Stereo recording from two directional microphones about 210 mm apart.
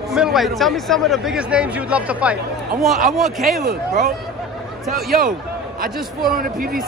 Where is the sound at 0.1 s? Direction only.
Centre (ahead or behind).